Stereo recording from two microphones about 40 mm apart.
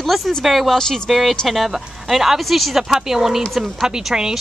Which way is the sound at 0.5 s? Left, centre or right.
Centre.